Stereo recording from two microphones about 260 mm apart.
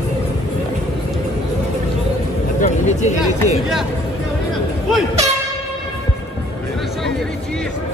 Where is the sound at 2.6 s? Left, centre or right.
Left.